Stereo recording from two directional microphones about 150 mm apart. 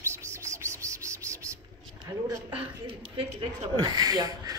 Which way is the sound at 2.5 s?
35° right (ahead or behind).